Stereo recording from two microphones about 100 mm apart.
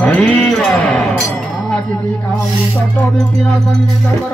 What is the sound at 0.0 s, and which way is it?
Music, 5° left (ahead or behind).